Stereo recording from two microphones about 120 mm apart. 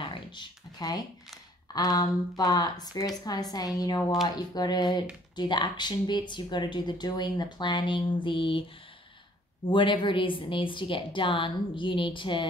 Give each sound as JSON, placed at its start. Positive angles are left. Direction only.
{"t": 0.0, "sound": "a sound", "side_deg": 40}
{"t": 1.7, "sound": "speech", "side_deg": 35}
{"t": 9.7, "sound": "a woman's voice", "side_deg": 45}